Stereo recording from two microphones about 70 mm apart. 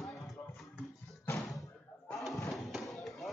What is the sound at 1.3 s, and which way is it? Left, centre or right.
Music, left.